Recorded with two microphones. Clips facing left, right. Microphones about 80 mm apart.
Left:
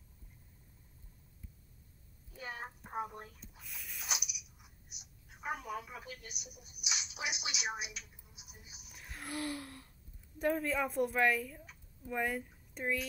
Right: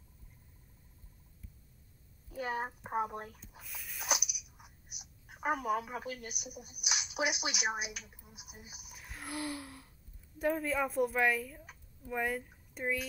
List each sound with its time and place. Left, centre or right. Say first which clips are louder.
2.3 s speech: right 8 dB; right
3.3 s a sound: right 2 dB; centre
4.3 s cat: right 2 dB; right
5.2 s speech: right 7 dB; right
8.8 s gasp: even; centre
10.4 s a woman's voice: right 1 dB; centre